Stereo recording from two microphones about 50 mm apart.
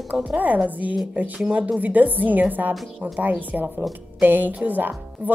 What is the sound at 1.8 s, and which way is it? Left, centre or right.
Speech, right.